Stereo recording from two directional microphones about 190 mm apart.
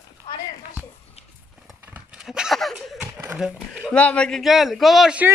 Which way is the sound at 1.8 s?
5° right (ahead or behind).